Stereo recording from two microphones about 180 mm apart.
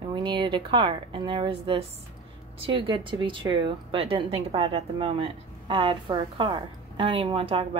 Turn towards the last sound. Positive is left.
turn(degrees=-30)  # may be behind; listen again after turning